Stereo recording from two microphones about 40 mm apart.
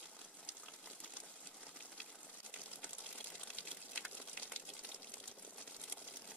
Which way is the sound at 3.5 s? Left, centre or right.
Left.